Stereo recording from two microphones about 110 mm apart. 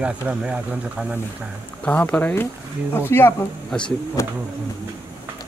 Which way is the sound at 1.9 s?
15° left (ahead or behind).